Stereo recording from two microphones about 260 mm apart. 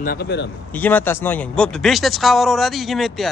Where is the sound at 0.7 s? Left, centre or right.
Centre.